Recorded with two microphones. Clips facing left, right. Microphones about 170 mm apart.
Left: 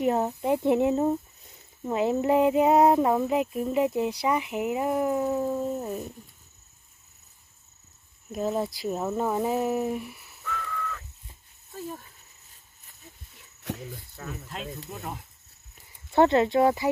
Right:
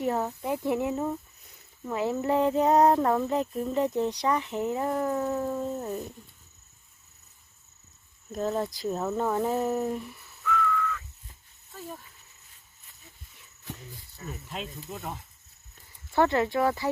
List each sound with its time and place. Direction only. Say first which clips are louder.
0.0 s speech: left 4 dB; 20° left (ahead or behind)
8.3 s speech: left 1 dB; 10° left (ahead or behind)
10.4 s whistling: right 6 dB; 35° left (ahead or behind)
13.7 s speech: left 7 dB; 70° left (ahead or behind)
14.9 s speech: even; centre (ahead or behind)
15.7 s speech: left 3 dB; 20° left (ahead or behind)